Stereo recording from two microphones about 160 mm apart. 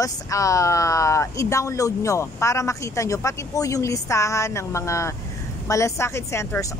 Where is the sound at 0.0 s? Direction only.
20° left (ahead or behind).